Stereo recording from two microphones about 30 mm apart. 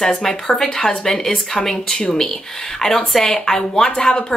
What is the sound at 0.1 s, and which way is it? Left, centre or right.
A woman's voice, centre.